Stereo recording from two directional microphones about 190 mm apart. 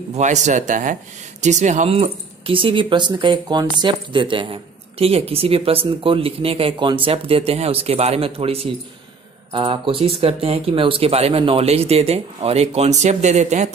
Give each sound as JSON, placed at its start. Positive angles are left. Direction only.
{"t": 0.1, "sound": "speech", "side_deg": -40}